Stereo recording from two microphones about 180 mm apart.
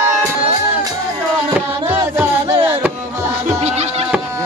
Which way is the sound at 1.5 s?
10° right (ahead or behind).